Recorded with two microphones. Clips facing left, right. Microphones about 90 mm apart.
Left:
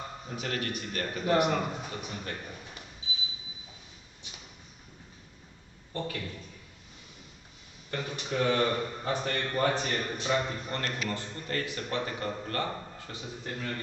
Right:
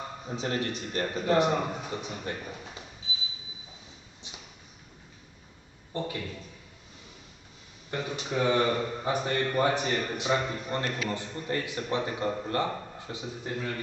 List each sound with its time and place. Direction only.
0.3 s a man's voice: 25° right (ahead or behind)
5.9 s a man's voice: 15° right (ahead or behind)
7.9 s a man's voice: 15° right (ahead or behind)